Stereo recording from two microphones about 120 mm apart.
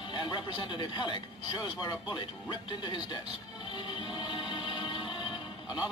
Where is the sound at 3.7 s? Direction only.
40° left (ahead or behind).